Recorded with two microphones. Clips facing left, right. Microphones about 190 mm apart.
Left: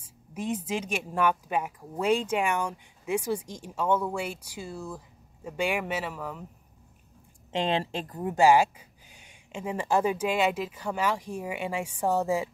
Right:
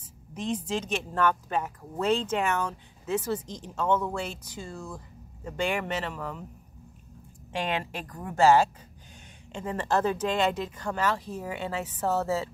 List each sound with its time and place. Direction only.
0.0 s a woman's voice: 10° left (ahead or behind)
7.5 s a woman's voice: 25° left (ahead or behind)